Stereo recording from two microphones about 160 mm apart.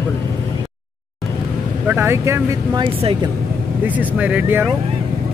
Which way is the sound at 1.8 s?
15° right (ahead or behind).